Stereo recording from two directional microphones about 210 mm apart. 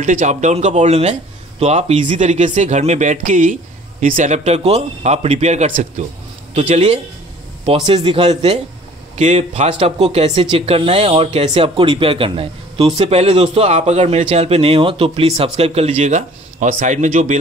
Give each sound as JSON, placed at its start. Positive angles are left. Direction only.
{"t": 0.0, "sound": "speech", "side_deg": -35}